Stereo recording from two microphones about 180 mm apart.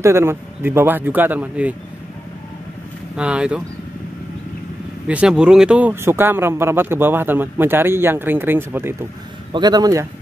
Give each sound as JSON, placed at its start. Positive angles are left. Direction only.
{"t": 0.0, "sound": "speech", "side_deg": -15}
{"t": 3.2, "sound": "speech", "side_deg": -5}
{"t": 5.0, "sound": "speech", "side_deg": -5}
{"t": 9.5, "sound": "speech", "side_deg": -25}